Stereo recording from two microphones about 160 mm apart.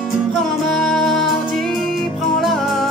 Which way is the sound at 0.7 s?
5° left (ahead or behind).